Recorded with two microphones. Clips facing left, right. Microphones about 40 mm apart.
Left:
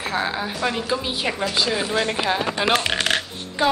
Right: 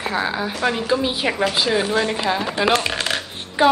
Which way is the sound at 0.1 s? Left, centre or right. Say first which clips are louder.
Even; centre.